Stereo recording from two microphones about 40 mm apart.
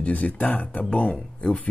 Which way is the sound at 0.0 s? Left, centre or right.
Left.